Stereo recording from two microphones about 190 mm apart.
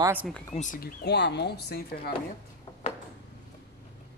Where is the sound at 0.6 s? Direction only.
45° left (ahead or behind).